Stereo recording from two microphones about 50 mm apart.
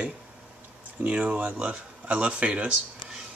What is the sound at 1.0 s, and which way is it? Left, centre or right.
Speech, right.